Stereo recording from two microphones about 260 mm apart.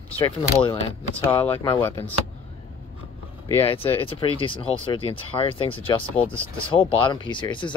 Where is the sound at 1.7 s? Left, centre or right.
Centre.